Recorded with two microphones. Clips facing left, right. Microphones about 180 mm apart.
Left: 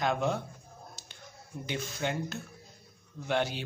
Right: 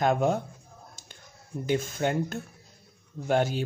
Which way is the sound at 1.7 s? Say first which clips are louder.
Right 7 dB; 45° right (ahead or behind).